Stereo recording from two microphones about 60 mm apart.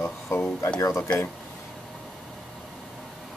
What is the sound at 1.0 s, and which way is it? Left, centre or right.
Speech, left.